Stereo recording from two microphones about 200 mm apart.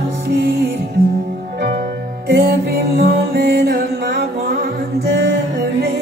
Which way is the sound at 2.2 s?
55° right (ahead or behind).